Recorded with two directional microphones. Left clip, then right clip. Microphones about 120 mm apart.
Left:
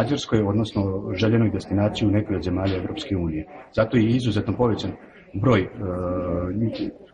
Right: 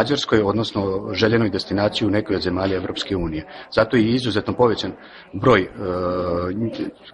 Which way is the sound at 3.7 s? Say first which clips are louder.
Right 4 dB; 35° right (ahead or behind).